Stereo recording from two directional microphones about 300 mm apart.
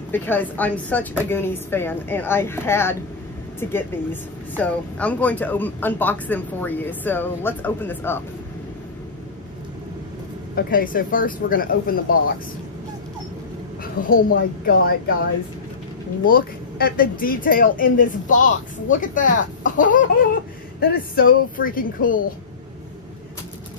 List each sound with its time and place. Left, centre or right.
0.1 s speech: centre
10.5 s speech: left
14.0 s speech: left
16.3 s speech: left